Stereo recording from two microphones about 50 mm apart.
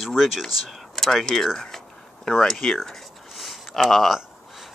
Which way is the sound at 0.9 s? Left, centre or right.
Centre.